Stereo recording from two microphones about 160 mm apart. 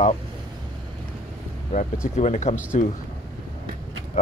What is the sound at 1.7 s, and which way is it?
Speech, 50° left (ahead or behind).